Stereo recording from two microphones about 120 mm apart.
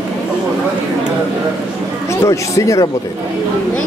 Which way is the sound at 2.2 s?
25° left (ahead or behind).